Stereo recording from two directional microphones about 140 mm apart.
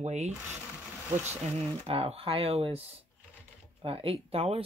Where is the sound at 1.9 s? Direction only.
45° right (ahead or behind).